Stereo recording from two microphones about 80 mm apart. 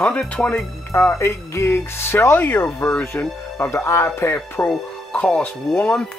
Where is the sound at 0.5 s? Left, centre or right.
Left.